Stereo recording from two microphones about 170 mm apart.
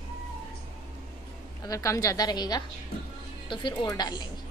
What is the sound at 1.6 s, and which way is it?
A woman's voice, 20° left (ahead or behind).